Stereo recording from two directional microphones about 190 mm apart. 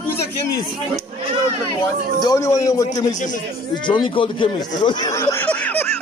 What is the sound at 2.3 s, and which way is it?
Speech, 15° left (ahead or behind).